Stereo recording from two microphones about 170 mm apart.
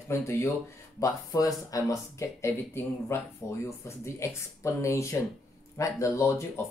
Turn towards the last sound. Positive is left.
turn(degrees=15)  # may be behind; listen again after turning